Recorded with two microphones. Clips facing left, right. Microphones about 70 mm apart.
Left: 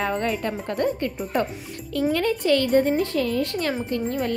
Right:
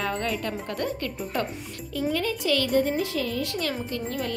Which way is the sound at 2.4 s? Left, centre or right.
Left.